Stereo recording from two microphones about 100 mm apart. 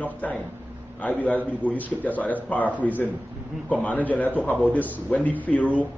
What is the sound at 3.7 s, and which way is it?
A man's voice, 15° left (ahead or behind).